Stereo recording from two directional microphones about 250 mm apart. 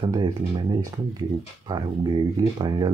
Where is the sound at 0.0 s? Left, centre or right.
Centre.